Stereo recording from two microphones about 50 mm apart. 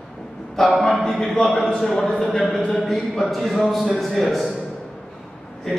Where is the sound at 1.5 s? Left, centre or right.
Centre.